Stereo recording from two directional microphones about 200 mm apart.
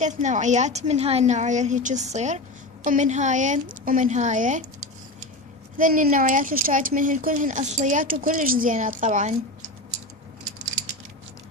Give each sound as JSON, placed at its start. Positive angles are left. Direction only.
{"t": 0.0, "sound": "a woman's voice", "side_deg": -35}
{"t": 5.8, "sound": "a woman's voice", "side_deg": -40}